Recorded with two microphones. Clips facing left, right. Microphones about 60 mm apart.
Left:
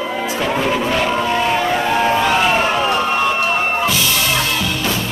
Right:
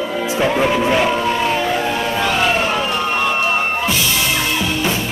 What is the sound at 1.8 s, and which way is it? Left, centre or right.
Music, left.